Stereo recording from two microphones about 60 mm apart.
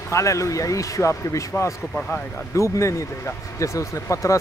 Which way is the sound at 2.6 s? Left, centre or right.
Left.